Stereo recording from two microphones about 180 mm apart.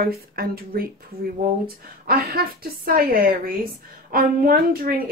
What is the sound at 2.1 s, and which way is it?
Speech, 55° right (ahead or behind).